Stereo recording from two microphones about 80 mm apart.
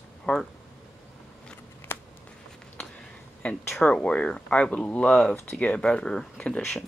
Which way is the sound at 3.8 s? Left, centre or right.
Centre.